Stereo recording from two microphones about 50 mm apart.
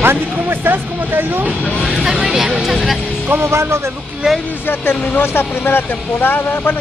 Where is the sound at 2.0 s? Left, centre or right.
Centre.